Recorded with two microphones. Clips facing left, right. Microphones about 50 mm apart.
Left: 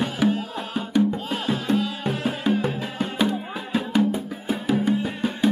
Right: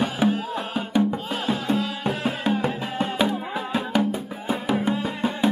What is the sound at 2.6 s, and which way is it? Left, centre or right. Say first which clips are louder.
Music: right 1 dB; right.